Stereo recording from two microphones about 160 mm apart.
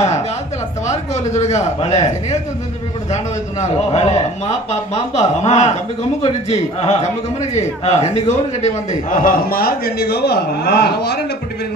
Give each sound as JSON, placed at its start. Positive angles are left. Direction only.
{"t": 0.8, "sound": "speech", "side_deg": 45}
{"t": 3.6, "sound": "a man's voice", "side_deg": 45}